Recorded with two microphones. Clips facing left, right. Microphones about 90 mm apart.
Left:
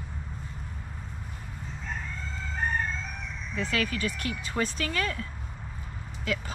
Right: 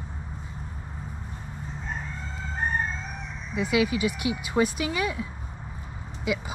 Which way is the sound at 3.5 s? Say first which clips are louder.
Right 6 dB; 10° right (ahead or behind).